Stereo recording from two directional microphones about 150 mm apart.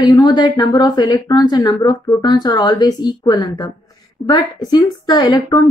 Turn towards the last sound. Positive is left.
turn(degrees=30)  # may be behind; listen again after turning